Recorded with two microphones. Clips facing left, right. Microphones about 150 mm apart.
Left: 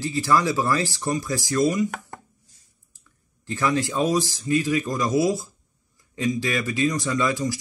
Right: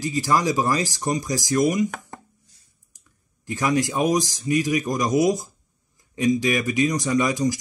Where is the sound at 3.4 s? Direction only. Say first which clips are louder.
Right 1 dB; 15° right (ahead or behind).